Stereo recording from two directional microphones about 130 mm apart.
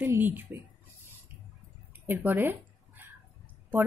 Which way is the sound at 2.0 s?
15° right (ahead or behind).